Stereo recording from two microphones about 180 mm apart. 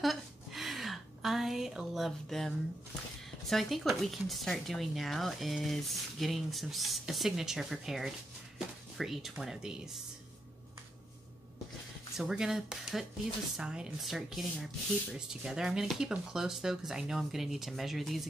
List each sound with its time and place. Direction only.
0.0 s a sound: centre (ahead or behind)
3.4 s speech: centre (ahead or behind)
12.2 s speech: 5° right (ahead or behind)